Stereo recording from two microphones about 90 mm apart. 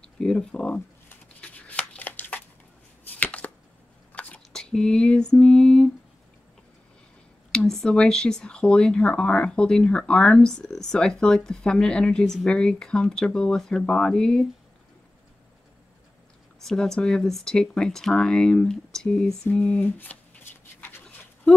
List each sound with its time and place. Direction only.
0.2 s speech: 10° left (ahead or behind)
1.0 s a sound: 15° left (ahead or behind)
3.1 s chopping: 15° left (ahead or behind)
4.1 s a sound: 15° left (ahead or behind)
7.5 s speech: 5° left (ahead or behind)
16.6 s speech: 5° left (ahead or behind)
19.5 s speech: 15° left (ahead or behind)